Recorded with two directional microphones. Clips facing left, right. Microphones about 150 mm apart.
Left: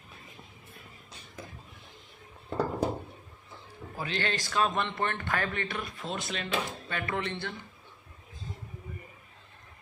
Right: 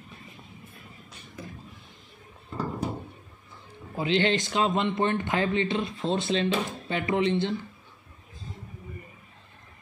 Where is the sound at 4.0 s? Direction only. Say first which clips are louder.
Right 9 dB; 20° right (ahead or behind).